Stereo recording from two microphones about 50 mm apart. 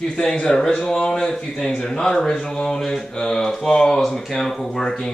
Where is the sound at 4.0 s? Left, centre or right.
Centre.